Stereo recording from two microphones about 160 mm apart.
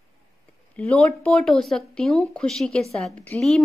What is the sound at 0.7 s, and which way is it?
A woman's voice, 10° left (ahead or behind).